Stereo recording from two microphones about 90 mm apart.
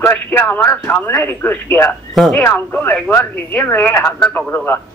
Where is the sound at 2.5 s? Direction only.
20° left (ahead or behind).